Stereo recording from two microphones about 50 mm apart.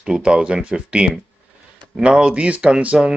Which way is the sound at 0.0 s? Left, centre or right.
Centre.